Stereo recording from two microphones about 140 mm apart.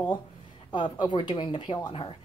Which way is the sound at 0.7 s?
30° left (ahead or behind).